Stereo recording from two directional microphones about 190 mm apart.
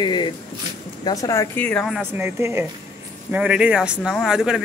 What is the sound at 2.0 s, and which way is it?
A woman's voice, 10° right (ahead or behind).